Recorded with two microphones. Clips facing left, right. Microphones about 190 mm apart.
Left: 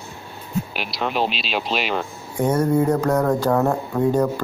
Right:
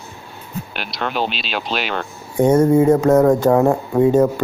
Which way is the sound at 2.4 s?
25° right (ahead or behind).